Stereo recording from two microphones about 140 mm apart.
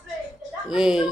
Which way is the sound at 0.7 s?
5° right (ahead or behind).